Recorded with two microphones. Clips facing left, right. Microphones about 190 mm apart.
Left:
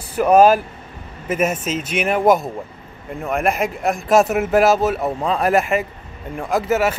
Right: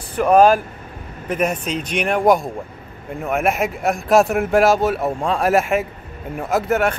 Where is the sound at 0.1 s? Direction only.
5° left (ahead or behind).